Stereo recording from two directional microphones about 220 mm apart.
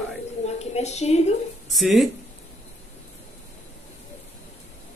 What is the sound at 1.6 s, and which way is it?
Speech, centre (ahead or behind).